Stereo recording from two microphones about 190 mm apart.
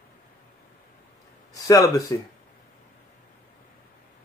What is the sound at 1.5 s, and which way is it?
Speech, 15° left (ahead or behind).